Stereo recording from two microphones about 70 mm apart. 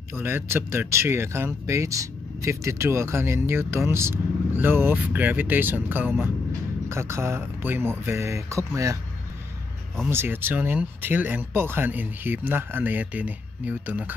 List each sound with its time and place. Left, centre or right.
0.1 s speech: right
6.9 s speech: right
10.0 s speech: right